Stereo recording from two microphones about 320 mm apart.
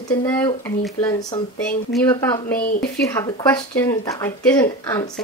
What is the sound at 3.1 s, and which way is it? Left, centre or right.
Speech, centre.